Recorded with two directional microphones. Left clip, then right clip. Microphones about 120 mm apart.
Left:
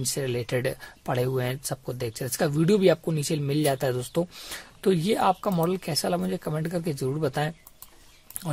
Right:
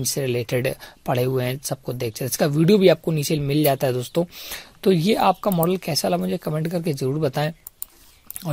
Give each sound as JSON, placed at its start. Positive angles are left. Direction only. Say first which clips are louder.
{"t": 0.0, "sound": "speech", "louder": "right 5 dB", "side_deg": -25}